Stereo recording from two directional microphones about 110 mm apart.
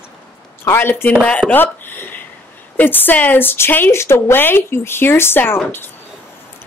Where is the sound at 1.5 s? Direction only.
20° left (ahead or behind).